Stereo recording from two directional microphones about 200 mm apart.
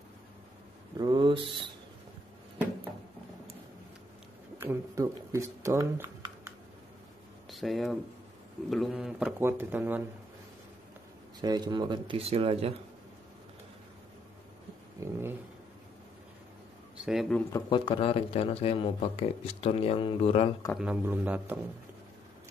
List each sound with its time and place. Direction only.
0.9 s speech: 20° right (ahead or behind)
4.6 s speech: 15° right (ahead or behind)
7.5 s a man's voice: centre (ahead or behind)
11.4 s speech: 20° right (ahead or behind)
17.0 s speech: centre (ahead or behind)
17.5 s speech: 20° left (ahead or behind)
20.7 s a man's voice: 5° right (ahead or behind)